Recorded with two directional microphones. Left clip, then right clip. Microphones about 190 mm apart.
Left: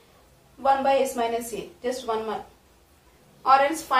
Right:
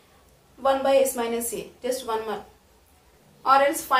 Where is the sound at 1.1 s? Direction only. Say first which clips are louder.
Left 1 dB; 30° right (ahead or behind).